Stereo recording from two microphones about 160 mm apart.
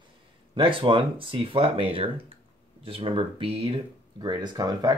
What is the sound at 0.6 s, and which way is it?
Speech, 30° right (ahead or behind).